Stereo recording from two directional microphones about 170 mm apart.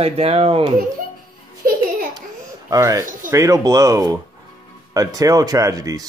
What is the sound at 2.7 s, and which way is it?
Speech, 20° right (ahead or behind).